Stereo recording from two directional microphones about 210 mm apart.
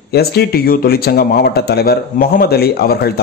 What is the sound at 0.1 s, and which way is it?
Speech, 50° left (ahead or behind).